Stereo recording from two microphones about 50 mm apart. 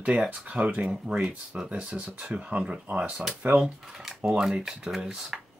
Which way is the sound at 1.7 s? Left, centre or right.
Right.